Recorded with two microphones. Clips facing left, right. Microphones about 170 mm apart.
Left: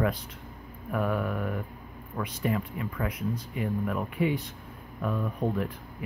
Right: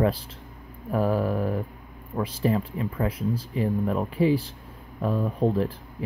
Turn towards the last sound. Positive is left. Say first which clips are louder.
# right 5 dB
turn(degrees=-30)  # may be behind; listen again after turning